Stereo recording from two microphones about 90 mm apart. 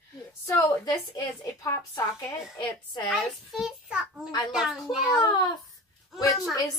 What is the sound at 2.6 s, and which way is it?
Speech, 60° left (ahead or behind).